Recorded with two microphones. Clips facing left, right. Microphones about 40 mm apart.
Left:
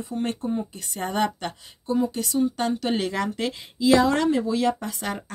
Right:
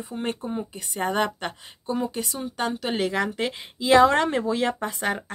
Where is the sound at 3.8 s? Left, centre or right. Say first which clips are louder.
Right 2 dB; right.